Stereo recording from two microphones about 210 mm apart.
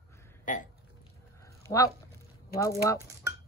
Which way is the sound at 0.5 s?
40° left (ahead or behind).